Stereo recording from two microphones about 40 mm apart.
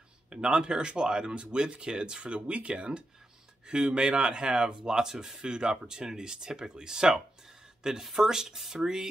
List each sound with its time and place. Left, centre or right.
0.3 s speech: right